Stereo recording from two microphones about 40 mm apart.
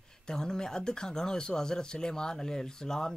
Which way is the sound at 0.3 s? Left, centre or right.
Centre.